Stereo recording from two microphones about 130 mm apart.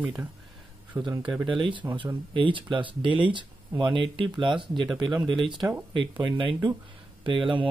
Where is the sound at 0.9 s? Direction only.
30° right (ahead or behind).